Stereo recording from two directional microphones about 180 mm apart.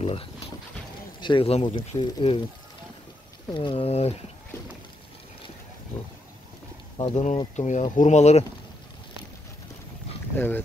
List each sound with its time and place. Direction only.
0.0 s speech: 30° left (ahead or behind)
3.5 s speech: 30° left (ahead or behind)
7.0 s speech: 30° left (ahead or behind)
7.5 s speech: 40° left (ahead or behind)
10.3 s speech: 10° left (ahead or behind)